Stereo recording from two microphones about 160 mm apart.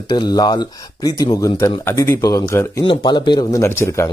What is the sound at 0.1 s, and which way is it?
Speech, 25° left (ahead or behind).